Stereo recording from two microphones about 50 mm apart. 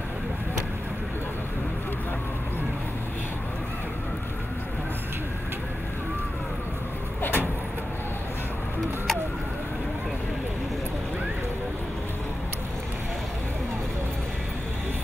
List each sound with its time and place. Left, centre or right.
7.2 s vehicle: left